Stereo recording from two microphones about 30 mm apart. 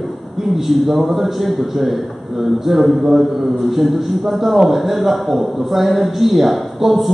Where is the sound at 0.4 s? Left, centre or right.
Centre.